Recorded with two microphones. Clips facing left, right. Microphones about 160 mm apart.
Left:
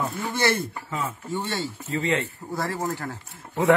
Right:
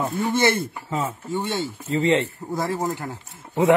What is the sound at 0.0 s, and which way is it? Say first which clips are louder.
Speech: right 5 dB; 35° right (ahead or behind).